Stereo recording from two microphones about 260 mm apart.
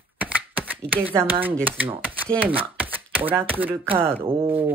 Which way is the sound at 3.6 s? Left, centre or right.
Centre.